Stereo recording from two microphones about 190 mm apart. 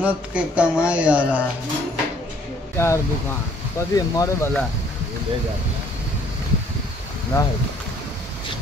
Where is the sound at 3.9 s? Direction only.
20° left (ahead or behind).